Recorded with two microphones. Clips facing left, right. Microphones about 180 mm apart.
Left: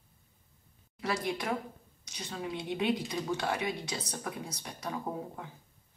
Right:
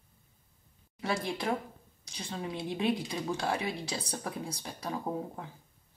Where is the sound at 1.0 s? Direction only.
30° right (ahead or behind).